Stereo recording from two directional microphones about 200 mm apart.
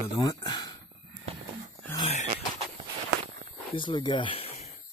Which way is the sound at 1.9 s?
30° left (ahead or behind).